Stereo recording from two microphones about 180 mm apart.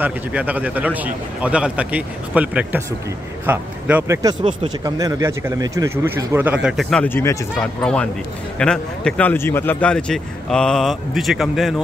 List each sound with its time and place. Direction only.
0.0 s a man's voice: 10° right (ahead or behind)
4.2 s speech: 25° right (ahead or behind); by 11.7 s centre (ahead or behind)